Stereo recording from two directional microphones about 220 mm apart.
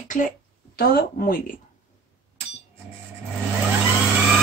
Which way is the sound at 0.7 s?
40° left (ahead or behind).